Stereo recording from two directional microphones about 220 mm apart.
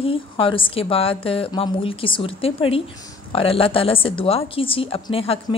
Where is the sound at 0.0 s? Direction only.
25° left (ahead or behind).